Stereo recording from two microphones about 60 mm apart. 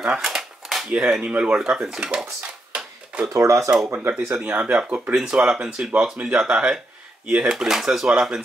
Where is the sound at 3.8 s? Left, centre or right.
Right.